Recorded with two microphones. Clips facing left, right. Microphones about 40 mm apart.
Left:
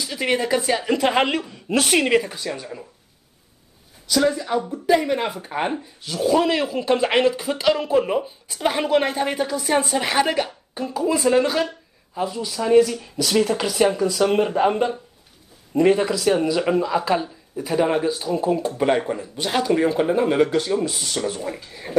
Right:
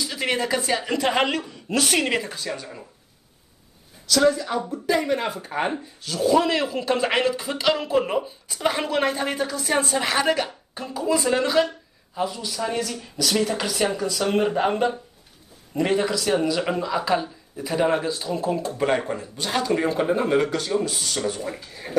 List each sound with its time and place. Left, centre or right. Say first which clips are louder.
0.0 s speech: left 2 dB; centre
1.7 s speech: left 3 dB; left
2.0 s speech: left 5 dB; centre
4.1 s speech: even; centre